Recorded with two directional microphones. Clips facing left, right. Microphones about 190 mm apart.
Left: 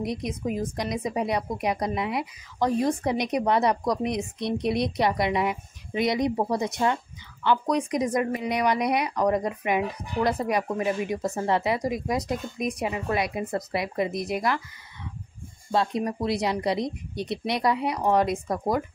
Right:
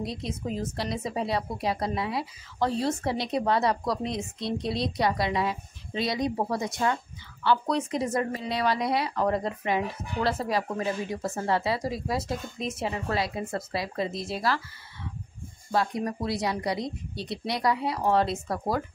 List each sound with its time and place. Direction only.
0.0 s a woman's voice: 15° left (ahead or behind)
15.7 s a woman's voice: 20° left (ahead or behind)